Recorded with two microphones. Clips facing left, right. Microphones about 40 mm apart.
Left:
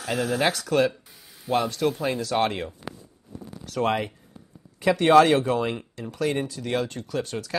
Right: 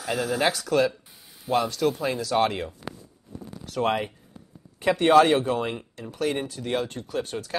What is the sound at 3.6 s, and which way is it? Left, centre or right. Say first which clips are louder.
Speech: even; left.